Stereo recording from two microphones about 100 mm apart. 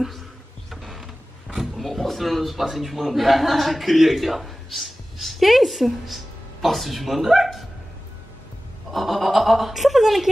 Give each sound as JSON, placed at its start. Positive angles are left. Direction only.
{"t": 0.7, "sound": "speech", "side_deg": 0}
{"t": 8.9, "sound": "speech", "side_deg": 0}